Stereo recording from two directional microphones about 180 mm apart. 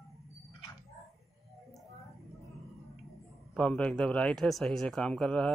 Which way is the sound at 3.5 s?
5° left (ahead or behind).